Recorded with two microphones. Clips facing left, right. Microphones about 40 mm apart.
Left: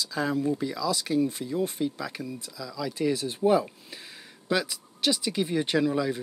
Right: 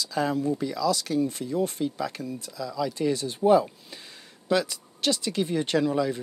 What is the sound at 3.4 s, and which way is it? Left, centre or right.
Speech, centre.